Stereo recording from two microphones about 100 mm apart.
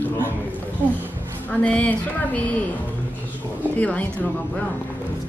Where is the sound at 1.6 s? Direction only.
15° left (ahead or behind).